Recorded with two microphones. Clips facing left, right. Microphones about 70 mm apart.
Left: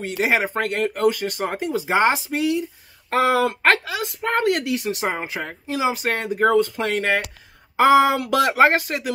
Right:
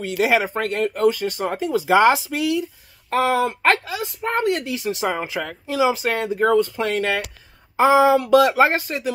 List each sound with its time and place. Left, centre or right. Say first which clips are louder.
0.0 s speech: right 2 dB; left
1.9 s speech: right 4 dB; left
3.4 s speech: even; left
5.0 s speech: right 2 dB; left
5.9 s speech: right 1 dB; left
7.7 s speech: even; left